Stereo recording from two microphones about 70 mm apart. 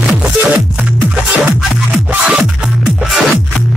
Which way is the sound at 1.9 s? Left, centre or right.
Right.